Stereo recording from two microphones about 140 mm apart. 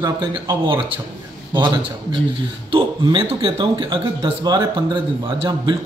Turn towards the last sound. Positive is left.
turn(degrees=-35)  # may be behind; listen again after turning